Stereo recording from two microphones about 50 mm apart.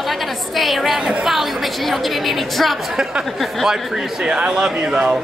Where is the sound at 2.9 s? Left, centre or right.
Centre.